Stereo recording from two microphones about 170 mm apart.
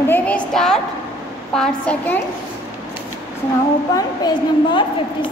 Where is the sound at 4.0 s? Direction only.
25° left (ahead or behind).